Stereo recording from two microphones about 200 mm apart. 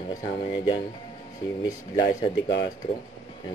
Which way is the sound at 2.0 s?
20° left (ahead or behind).